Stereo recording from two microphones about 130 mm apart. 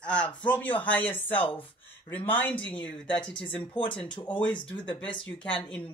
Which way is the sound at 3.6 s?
40° left (ahead or behind).